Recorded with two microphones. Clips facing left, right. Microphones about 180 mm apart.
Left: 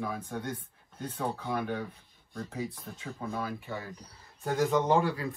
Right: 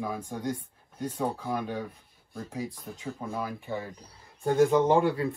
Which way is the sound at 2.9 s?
15° right (ahead or behind).